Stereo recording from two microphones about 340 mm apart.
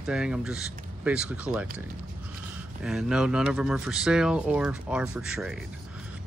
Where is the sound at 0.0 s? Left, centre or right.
Centre.